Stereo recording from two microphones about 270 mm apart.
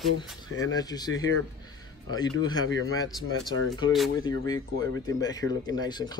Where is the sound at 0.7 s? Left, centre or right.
Centre.